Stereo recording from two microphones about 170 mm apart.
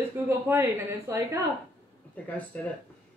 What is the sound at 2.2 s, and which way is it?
Speech, 10° left (ahead or behind).